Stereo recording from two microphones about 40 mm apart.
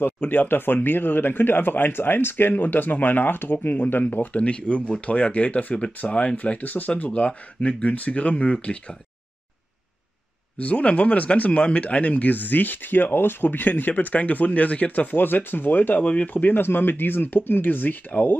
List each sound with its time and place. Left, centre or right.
0.0 s speech: left
4.4 s speech: left
10.6 s speech: left